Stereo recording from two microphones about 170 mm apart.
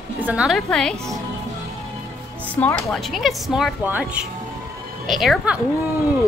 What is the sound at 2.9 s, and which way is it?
Speech, centre (ahead or behind).